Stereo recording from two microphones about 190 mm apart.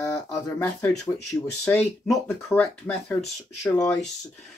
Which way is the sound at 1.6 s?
5° left (ahead or behind).